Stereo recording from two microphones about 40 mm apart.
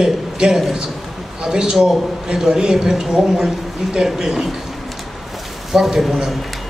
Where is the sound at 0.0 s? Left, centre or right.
Centre.